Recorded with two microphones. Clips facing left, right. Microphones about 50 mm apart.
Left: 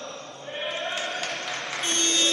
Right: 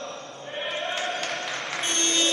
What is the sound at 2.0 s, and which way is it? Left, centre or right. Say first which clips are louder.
Music: even; right.